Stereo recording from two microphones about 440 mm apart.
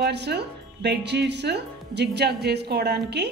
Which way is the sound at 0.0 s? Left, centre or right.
Right.